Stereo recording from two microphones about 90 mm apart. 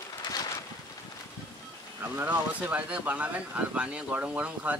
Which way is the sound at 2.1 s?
20° right (ahead or behind).